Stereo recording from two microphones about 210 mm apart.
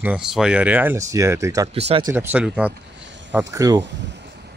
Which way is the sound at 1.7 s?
30° right (ahead or behind).